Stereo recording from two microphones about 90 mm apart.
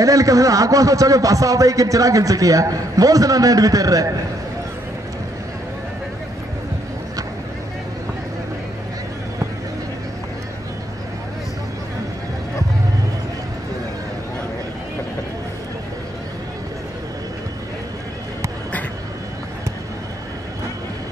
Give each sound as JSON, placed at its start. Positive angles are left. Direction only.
{"t": 0.0, "sound": "a man's voice", "side_deg": -35}